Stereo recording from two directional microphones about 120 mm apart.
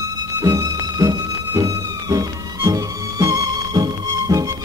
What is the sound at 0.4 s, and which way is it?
Music, 30° right (ahead or behind).